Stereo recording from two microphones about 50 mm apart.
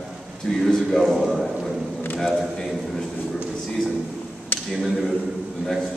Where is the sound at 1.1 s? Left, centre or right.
Centre.